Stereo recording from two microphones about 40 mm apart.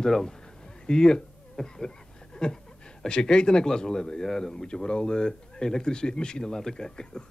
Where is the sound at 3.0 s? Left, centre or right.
Centre.